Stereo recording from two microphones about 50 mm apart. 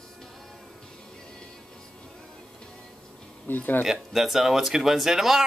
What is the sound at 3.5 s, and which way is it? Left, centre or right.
Speech, left.